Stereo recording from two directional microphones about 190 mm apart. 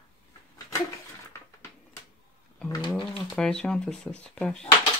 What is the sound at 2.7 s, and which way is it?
Speech, 25° left (ahead or behind).